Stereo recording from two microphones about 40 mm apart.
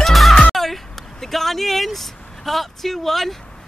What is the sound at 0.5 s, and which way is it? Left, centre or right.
Vehicle, centre.